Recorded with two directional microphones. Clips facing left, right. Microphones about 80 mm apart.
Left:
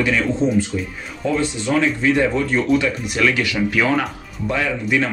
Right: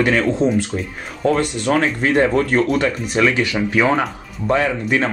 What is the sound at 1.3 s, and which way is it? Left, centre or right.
Speech, right.